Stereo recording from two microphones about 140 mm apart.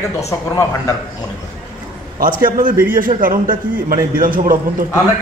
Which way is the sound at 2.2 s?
80° right.